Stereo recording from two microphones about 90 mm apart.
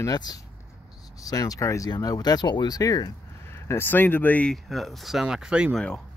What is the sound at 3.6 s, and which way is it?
Speech, 25° left (ahead or behind).